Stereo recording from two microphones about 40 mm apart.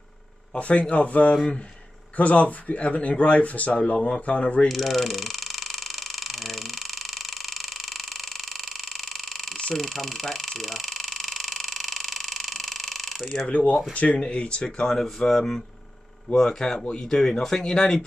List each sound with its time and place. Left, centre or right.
0.6 s speech: left
4.6 s a sound: centre
13.5 s speech: left
14.9 s speech: centre
17.4 s speech: centre